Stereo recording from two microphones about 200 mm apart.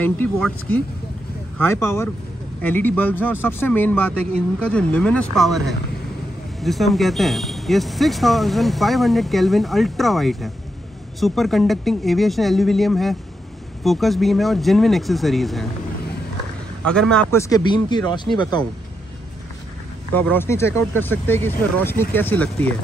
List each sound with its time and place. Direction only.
0.0 s speech: 10° left (ahead or behind)
16.8 s speech: 5° left (ahead or behind); by 18.7 s 20° left (ahead or behind)
20.2 s speech: 10° left (ahead or behind)